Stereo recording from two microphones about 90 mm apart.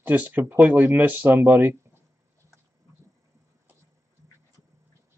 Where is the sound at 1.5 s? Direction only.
20° right (ahead or behind).